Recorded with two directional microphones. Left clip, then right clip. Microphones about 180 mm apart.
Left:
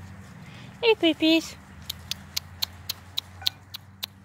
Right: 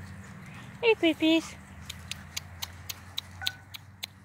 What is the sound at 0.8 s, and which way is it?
Speech, 15° left (ahead or behind).